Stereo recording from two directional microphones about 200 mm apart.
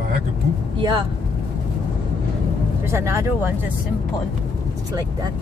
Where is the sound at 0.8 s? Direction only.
20° right (ahead or behind).